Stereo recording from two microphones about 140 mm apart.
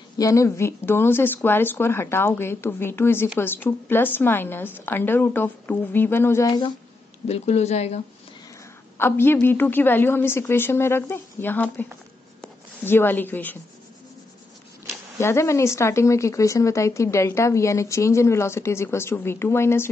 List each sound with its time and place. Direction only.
0.2 s a woman's voice: 25° left (ahead or behind)
7.2 s speech: 50° left (ahead or behind)
8.9 s a woman's voice: 15° left (ahead or behind)
15.1 s speech: 20° left (ahead or behind)